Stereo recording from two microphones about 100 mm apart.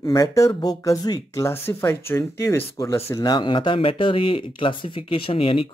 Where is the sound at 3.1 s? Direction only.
40° left (ahead or behind); by 5.7 s 65° left (ahead or behind).